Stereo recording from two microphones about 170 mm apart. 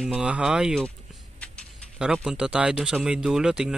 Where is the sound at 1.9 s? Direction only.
5° right (ahead or behind).